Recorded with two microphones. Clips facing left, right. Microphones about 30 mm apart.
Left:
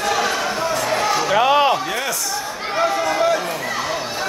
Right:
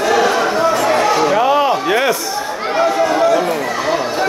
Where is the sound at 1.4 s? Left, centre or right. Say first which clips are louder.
Right 2 dB; left.